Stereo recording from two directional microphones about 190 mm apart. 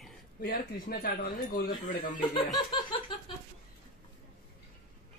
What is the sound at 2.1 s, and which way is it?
Laughter, 25° left (ahead or behind).